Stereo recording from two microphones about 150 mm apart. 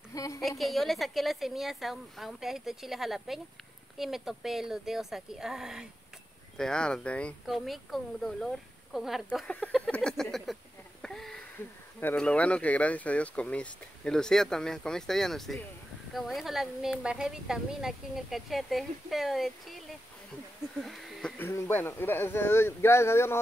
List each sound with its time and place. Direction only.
0.1 s a woman's voice: 25° left (ahead or behind)
0.4 s a woman's voice: centre (ahead or behind)
9.5 s a sound: 5° left (ahead or behind)
12.0 s a woman's voice: 10° left (ahead or behind)
21.4 s speech: 15° left (ahead or behind)